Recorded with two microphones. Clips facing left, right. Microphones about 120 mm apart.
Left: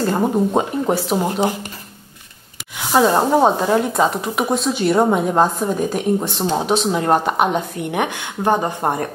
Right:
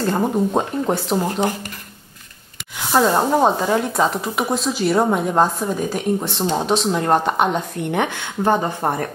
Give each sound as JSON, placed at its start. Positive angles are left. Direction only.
{"t": 0.0, "sound": "a woman's voice", "side_deg": 5}
{"t": 2.8, "sound": "a woman's voice", "side_deg": 5}